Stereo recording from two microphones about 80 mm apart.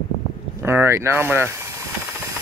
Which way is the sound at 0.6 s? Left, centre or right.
Right.